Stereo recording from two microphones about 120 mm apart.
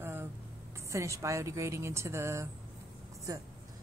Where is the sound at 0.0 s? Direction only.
20° right (ahead or behind).